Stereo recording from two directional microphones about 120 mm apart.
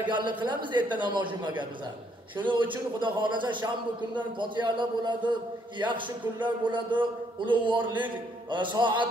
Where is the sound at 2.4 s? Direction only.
45° right (ahead or behind).